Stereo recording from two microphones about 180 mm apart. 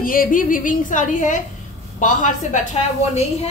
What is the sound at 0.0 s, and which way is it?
A woman's voice, 50° left (ahead or behind).